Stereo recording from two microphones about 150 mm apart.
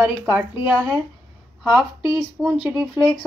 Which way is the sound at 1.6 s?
5° right (ahead or behind).